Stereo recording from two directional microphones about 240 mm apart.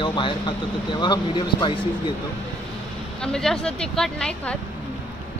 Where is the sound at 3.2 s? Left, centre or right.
Centre.